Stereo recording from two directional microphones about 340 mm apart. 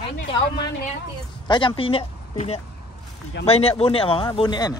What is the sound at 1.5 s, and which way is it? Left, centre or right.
A man's voice, centre.